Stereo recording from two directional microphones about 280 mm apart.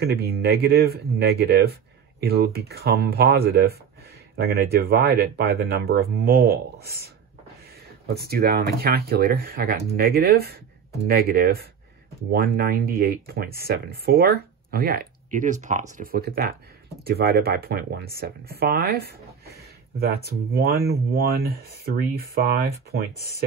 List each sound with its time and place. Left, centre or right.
0.0 s speech: right
8.1 s speech: right